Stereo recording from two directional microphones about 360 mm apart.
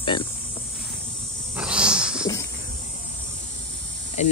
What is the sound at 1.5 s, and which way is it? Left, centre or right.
Wild animals, centre.